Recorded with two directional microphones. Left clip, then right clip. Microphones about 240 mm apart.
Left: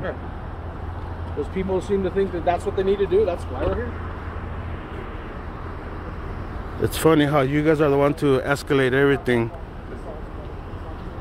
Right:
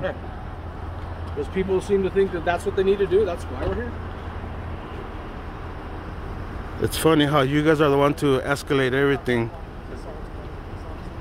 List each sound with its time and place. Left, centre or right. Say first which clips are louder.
1.6 s speech: right 2 dB; right
6.8 s speech: left 1 dB; centre